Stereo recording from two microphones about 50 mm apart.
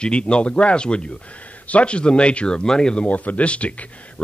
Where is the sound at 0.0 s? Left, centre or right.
Centre.